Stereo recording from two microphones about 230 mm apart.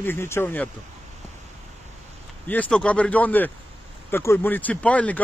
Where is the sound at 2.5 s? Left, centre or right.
Centre.